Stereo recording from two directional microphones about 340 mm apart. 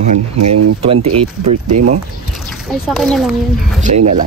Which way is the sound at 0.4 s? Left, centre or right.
Right.